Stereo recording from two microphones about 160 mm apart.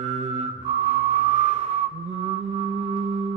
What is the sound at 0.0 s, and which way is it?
Music, 40° right (ahead or behind).